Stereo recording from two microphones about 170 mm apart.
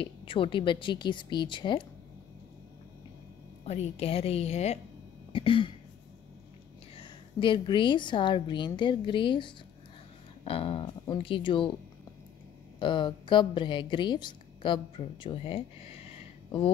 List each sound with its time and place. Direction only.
0.0 s a woman's voice: 30° left (ahead or behind)
3.6 s a woman's voice: 40° left (ahead or behind)
5.3 s throat clearing: 30° left (ahead or behind)
7.0 s a woman's voice: 30° left (ahead or behind)
12.7 s a woman's voice: 30° left (ahead or behind)